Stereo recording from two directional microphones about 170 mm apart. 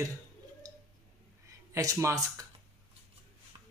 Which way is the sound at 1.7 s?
20° right (ahead or behind).